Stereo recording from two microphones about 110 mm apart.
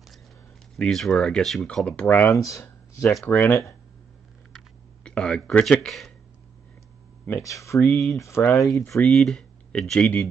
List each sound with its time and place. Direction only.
0.7 s speech: 5° left (ahead or behind); by 2.6 s 30° left (ahead or behind)
2.6 s a sound: 25° left (ahead or behind)
3.3 s speech: 25° left (ahead or behind)
4.5 s a sound: 5° left (ahead or behind)
7.2 s speech: 25° left (ahead or behind)
8.9 s speech: 5° left (ahead or behind)